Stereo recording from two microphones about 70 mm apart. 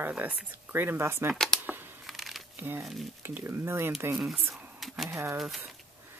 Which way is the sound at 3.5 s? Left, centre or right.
Right.